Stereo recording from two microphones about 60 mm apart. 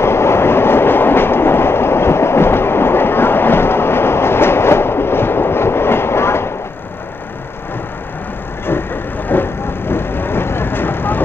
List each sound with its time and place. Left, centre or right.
0.0 s train: left
9.3 s vehicle: left